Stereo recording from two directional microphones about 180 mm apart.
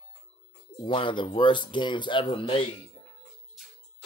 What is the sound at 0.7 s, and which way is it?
Speech, 30° left (ahead or behind).